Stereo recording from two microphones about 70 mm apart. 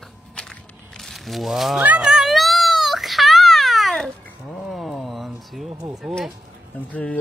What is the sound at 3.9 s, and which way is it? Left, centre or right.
Cat, centre.